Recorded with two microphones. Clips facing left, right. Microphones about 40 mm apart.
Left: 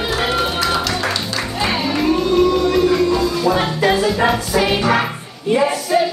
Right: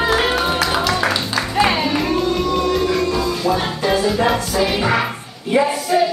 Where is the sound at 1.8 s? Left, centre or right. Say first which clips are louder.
Left 1 dB; centre.